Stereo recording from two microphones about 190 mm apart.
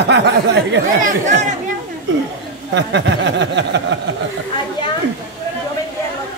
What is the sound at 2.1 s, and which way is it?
Speech, 75° right (ahead or behind).